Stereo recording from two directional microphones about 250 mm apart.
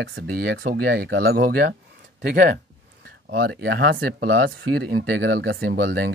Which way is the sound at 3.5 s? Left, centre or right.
Right.